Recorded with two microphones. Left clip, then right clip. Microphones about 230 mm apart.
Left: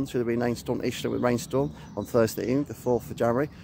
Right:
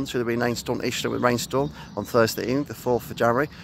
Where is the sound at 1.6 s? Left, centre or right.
Centre.